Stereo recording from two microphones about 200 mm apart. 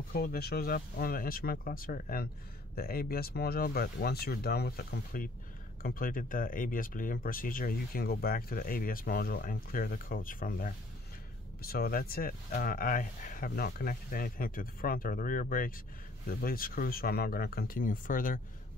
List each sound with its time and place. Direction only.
0.1 s speech: 50° left (ahead or behind)